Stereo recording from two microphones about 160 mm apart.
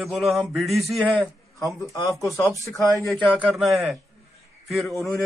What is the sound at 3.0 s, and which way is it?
Speech, 10° left (ahead or behind).